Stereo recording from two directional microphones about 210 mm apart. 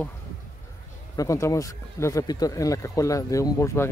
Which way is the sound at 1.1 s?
15° left (ahead or behind).